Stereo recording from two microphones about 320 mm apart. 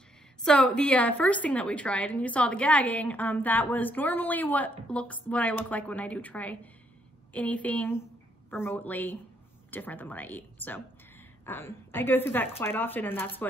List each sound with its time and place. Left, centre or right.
0.4 s a woman's voice: centre